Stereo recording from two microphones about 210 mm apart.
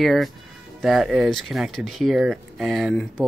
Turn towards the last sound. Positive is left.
turn(degrees=0)  # may be behind; listen again after turning